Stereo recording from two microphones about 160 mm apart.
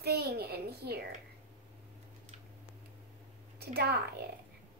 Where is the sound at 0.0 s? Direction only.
85° right.